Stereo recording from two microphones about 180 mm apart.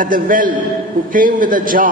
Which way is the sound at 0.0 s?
50° right (ahead or behind).